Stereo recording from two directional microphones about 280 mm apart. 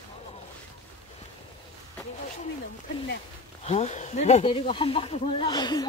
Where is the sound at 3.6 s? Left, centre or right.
Left.